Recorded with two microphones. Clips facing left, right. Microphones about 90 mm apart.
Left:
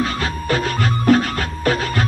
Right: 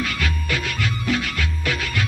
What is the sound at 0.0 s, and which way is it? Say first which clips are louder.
Music: left 4 dB; 35° left (ahead or behind).